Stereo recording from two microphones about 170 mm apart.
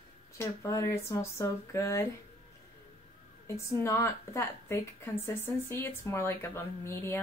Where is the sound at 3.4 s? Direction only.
15° left (ahead or behind).